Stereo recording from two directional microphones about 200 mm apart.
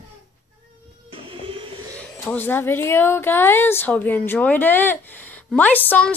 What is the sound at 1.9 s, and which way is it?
A woman's voice, 5° left (ahead or behind).